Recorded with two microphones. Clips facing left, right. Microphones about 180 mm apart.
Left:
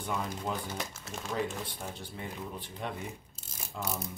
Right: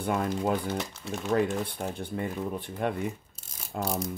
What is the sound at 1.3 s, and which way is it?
Speech, 60° right (ahead or behind).